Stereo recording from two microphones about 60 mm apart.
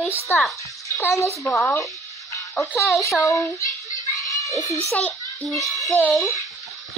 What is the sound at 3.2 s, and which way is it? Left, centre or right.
A child's voice, left.